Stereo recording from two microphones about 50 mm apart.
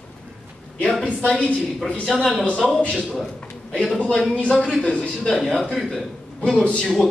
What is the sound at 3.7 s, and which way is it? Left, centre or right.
A man's voice, centre.